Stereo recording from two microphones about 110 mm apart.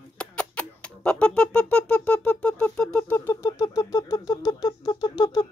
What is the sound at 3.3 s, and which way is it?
Speech, 30° left (ahead or behind).